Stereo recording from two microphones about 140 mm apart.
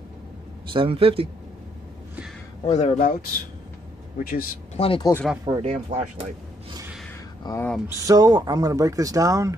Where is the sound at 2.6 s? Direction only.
50° left (ahead or behind).